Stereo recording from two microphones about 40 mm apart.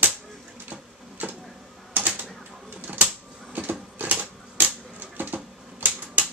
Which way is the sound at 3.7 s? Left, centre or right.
Right.